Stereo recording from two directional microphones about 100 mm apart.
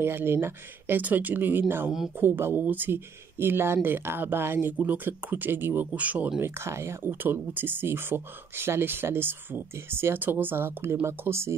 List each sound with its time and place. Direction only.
0.0 s speech: 25° right (ahead or behind)